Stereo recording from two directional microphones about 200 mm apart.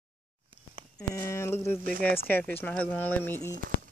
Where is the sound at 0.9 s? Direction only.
15° left (ahead or behind).